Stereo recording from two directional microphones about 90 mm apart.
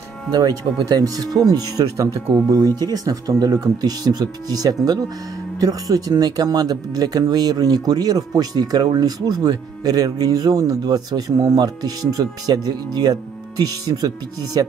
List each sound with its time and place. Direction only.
0.3 s speech: 50° right (ahead or behind)
14.5 s speech: 50° right (ahead or behind)